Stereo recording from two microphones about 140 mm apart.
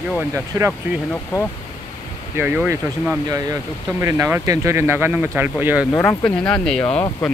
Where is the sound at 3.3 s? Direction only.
25° right (ahead or behind).